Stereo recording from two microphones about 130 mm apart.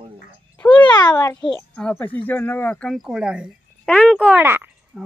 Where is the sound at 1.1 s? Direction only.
20° left (ahead or behind).